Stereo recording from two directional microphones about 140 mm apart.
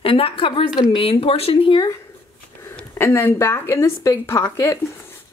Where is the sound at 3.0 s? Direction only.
15° left (ahead or behind).